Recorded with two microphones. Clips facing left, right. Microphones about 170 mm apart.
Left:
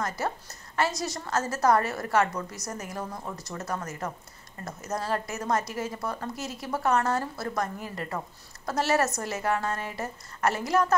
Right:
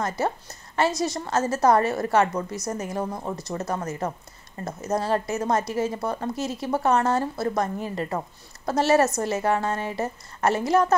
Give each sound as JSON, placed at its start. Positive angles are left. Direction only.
{"t": 0.0, "sound": "a woman's voice", "side_deg": -25}